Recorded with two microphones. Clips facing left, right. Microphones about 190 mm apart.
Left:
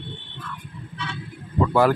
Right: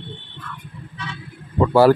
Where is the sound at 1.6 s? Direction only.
35° right (ahead or behind).